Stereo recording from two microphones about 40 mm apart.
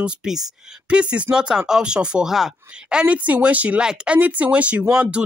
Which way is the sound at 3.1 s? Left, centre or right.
Right.